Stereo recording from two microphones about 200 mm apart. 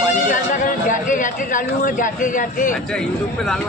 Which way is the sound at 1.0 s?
40° left (ahead or behind).